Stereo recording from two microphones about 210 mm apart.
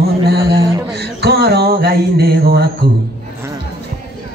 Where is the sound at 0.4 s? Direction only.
15° right (ahead or behind).